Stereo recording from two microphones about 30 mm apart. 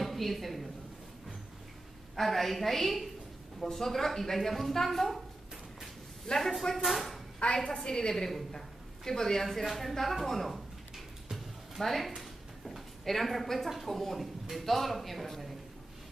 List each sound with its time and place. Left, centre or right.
0.0 s a woman's voice: centre
2.1 s speech: centre
6.3 s speech: left
6.8 s speech: centre
7.5 s a woman's voice: left
9.4 s speech: centre
11.3 s music: centre
12.2 s a sound: centre
13.8 s speech: centre